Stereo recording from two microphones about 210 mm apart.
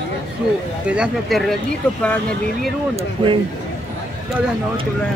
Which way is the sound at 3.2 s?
20° right (ahead or behind).